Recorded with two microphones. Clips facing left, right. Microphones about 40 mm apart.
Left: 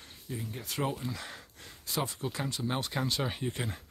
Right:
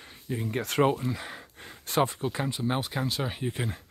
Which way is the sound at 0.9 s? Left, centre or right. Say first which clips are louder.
Right 6 dB; centre.